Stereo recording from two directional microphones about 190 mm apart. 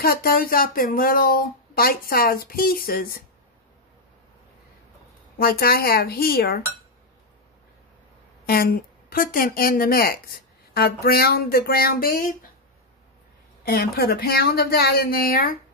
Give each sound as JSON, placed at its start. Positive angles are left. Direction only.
{"t": 0.0, "sound": "speech", "side_deg": 50}
{"t": 5.4, "sound": "speech", "side_deg": 55}
{"t": 8.5, "sound": "speech", "side_deg": 50}
{"t": 13.7, "sound": "speech", "side_deg": 55}